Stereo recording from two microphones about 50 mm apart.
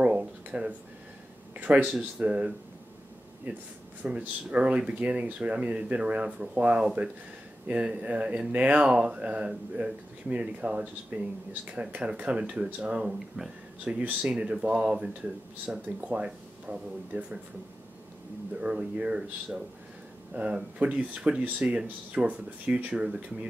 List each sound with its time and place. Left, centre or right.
0.0 s a sound: right
1.6 s speech: right
1.9 s speech: right
3.5 s speech: right
18.6 s speech: right